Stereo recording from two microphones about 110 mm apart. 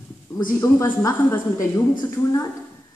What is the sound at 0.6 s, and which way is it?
Speech, 25° left (ahead or behind).